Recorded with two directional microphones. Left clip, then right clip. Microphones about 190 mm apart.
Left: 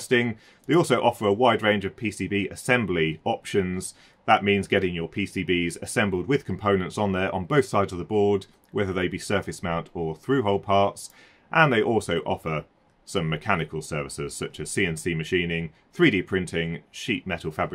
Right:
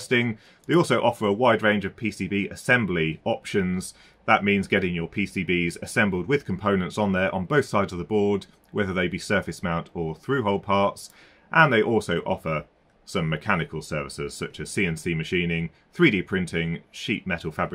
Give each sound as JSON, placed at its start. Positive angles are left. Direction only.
{"t": 0.0, "sound": "speech", "side_deg": 55}